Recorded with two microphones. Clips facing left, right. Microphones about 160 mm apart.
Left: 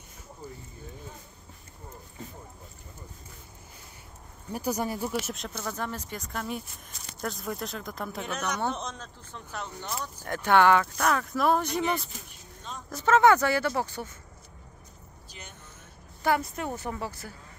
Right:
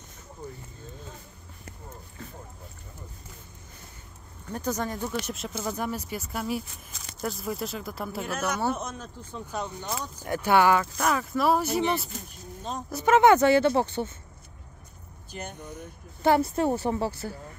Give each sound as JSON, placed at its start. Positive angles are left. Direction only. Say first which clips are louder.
{"t": 0.4, "sound": "vehicle", "louder": "right 2 dB", "side_deg": 10}
{"t": 4.5, "sound": "speech", "louder": "even", "side_deg": 10}
{"t": 5.6, "sound": "speech", "louder": "right 4 dB", "side_deg": -10}
{"t": 12.9, "sound": "speech", "louder": "right 2 dB", "side_deg": -15}
{"t": 15.3, "sound": "speech", "louder": "right 11 dB", "side_deg": -50}
{"t": 15.7, "sound": "speech", "louder": "right 10 dB", "side_deg": -25}